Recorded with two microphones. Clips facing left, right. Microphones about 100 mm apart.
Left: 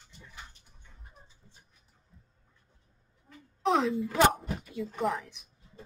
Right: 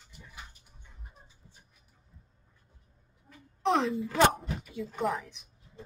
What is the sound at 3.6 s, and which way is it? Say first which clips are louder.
Speech: left 1 dB; centre (ahead or behind).